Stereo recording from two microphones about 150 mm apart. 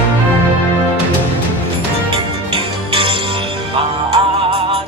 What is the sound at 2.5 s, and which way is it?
Music, 35° right (ahead or behind).